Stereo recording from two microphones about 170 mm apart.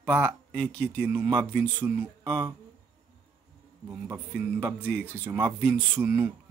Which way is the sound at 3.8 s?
15° right (ahead or behind).